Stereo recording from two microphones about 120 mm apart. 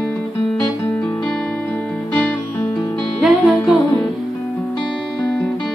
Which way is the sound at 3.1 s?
5° right (ahead or behind).